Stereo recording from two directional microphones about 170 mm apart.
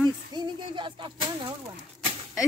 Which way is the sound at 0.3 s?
25° right (ahead or behind).